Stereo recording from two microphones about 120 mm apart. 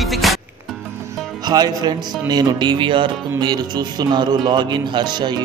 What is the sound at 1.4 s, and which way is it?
Speech, 35° right (ahead or behind).